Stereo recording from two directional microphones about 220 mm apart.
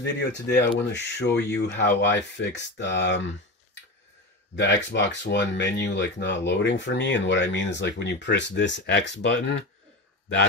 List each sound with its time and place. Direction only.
0.0 s speech: 50° left (ahead or behind)
4.6 s speech: 55° left (ahead or behind)